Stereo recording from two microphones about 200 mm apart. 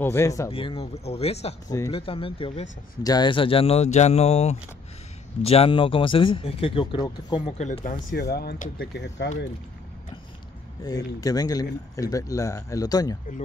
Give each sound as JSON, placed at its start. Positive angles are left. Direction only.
{"t": 0.0, "sound": "speech", "side_deg": 15}
{"t": 0.5, "sound": "speech", "side_deg": 25}
{"t": 7.5, "sound": "speech", "side_deg": 35}
{"t": 8.1, "sound": "speech", "side_deg": 55}
{"t": 10.8, "sound": "speech", "side_deg": 20}